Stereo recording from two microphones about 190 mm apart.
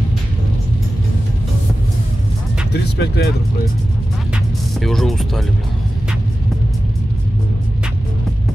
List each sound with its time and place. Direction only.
2.7 s speech: 60° left (ahead or behind)
4.7 s speech: centre (ahead or behind)